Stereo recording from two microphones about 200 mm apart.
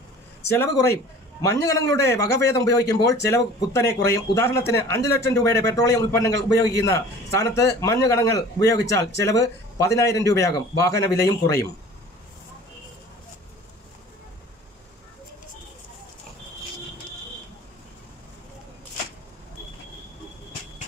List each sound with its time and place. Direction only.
0.5 s speech: 15° left (ahead or behind)